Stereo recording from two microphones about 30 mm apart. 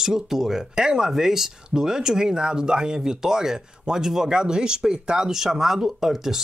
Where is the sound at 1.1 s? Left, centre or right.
Centre; by 5.3 s right.